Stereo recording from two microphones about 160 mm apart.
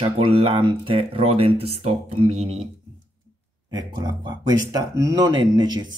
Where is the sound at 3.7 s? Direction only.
25° right (ahead or behind).